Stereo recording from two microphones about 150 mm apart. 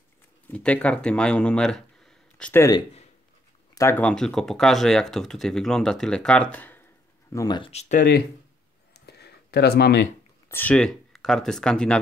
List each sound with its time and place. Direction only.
0.5 s speech: 10° left (ahead or behind)
2.5 s speech: 20° left (ahead or behind)
4.0 s speech: 5° left (ahead or behind)
7.3 s speech: 30° left (ahead or behind)
7.7 s speech: 55° left (ahead or behind)
8.9 s a sound: 90° left
10.5 s speech: 10° left (ahead or behind)